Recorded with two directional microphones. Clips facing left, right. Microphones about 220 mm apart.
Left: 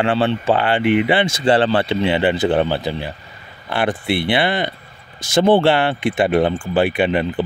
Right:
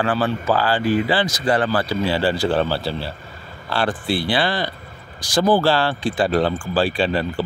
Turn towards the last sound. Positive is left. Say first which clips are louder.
# left 3 dB
turn(degrees=20)  # may be behind; listen again after turning